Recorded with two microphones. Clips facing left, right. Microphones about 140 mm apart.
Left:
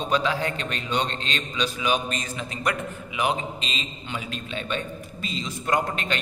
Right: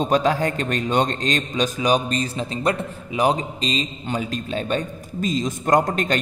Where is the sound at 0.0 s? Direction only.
45° right (ahead or behind).